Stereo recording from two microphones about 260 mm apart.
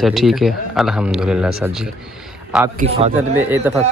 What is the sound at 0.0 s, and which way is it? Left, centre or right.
Speech, centre.